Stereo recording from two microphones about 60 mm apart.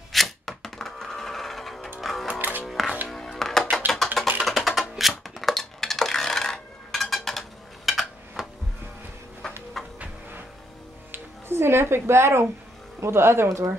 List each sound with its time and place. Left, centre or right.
0.1 s music: centre
2.2 s music: right
2.6 s music: centre
5.2 s coin: centre
9.8 s a sound: centre
11.1 s music: right
13.0 s speech: right
13.5 s speech: right